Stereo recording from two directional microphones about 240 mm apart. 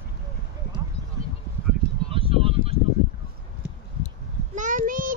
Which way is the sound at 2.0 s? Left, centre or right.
Right.